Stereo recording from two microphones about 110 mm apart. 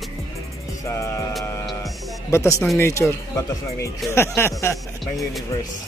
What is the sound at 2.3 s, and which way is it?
Speech, 25° left (ahead or behind).